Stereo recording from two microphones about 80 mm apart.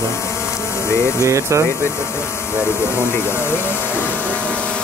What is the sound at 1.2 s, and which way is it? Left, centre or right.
Speech, right.